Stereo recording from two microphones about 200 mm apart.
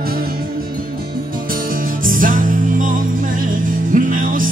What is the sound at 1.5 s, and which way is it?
Music, 45° right (ahead or behind).